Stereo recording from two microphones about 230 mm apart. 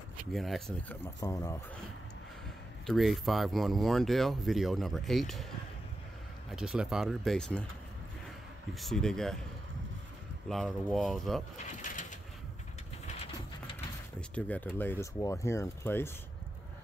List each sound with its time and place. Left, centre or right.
0.3 s speech: centre
2.9 s speech: centre
6.5 s speech: centre
8.7 s speech: centre
10.5 s speech: centre
11.9 s a sound: left
14.3 s speech: centre